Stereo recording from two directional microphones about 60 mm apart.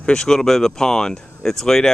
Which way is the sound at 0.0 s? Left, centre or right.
Centre.